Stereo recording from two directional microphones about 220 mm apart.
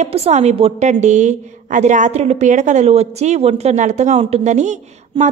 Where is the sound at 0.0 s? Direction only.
30° right (ahead or behind).